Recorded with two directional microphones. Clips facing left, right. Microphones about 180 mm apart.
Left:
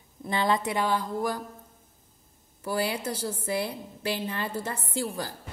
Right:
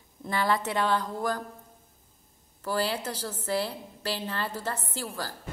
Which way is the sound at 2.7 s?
10° left (ahead or behind).